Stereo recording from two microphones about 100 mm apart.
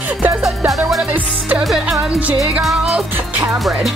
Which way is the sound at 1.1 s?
15° right (ahead or behind).